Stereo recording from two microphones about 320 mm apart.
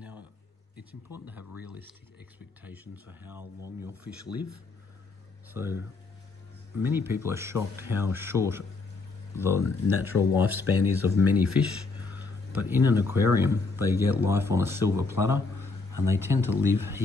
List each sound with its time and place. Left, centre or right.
0.7 s speech: centre
5.5 s speech: centre
6.8 s speech: centre
15.1 s a sound: left
16.2 s speech: centre